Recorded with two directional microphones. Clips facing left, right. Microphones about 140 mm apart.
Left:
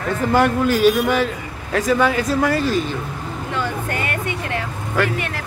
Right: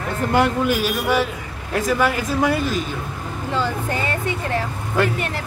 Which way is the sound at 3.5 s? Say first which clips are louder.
Right 2 dB; 30° right (ahead or behind).